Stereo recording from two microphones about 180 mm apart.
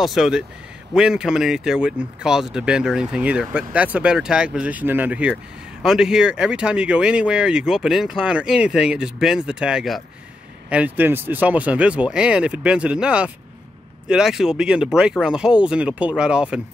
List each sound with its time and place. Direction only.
0.0 s speech: centre (ahead or behind)